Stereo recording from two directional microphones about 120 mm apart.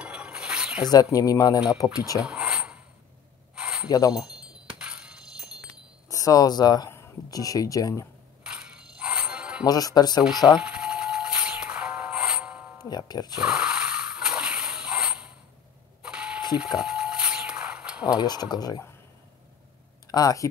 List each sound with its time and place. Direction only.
0.0 s a sound: 10° right (ahead or behind)
1.1 s speech: 30° left (ahead or behind)
2.1 s a sound: 5° right (ahead or behind)
4.1 s wind chime: 5° right (ahead or behind)
6.0 s speech: 30° left (ahead or behind)
8.5 s music: 10° right (ahead or behind)
9.7 s speech: 30° left (ahead or behind)
10.6 s music: 10° right (ahead or behind)
12.9 s speech: 35° left (ahead or behind)
13.4 s a sound: 5° right (ahead or behind)
18.0 s speech: 35° left (ahead or behind)
20.1 s speech: 30° left (ahead or behind)